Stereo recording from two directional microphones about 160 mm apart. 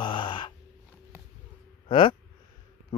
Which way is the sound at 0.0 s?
30° left (ahead or behind).